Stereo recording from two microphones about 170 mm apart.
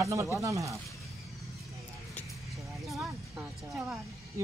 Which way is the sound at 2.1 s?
Centre (ahead or behind).